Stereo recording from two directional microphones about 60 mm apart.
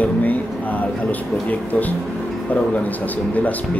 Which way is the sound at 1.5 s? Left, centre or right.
Left.